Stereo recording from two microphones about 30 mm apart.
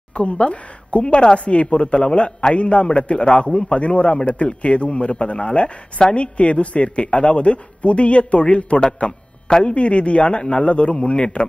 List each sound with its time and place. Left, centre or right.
0.1 s speech: left
9.5 s a man's voice: left
9.8 s speech: left
11.0 s speech: left